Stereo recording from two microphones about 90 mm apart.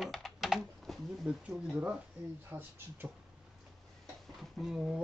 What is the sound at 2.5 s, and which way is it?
Speech, 20° right (ahead or behind).